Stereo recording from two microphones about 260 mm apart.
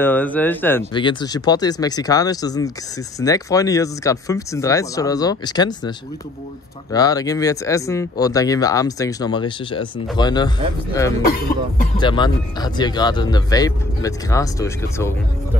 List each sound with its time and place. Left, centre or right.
0.0 s speech: centre
12.0 s speech: centre